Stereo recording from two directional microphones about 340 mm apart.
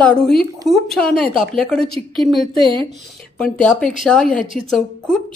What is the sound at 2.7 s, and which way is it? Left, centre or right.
Speech, centre.